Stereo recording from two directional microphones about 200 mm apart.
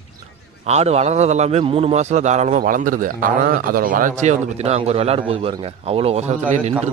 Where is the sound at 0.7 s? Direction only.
30° right (ahead or behind).